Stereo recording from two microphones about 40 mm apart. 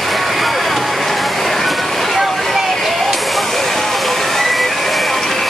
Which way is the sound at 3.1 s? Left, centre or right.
Centre.